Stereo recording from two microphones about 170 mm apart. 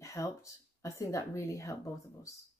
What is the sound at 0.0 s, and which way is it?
Speech, 20° left (ahead or behind).